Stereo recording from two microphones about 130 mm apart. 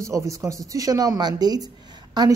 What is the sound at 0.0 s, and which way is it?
Speech, 25° right (ahead or behind).